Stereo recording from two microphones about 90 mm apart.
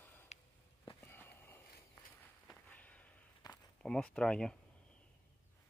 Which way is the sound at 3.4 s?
45° left (ahead or behind).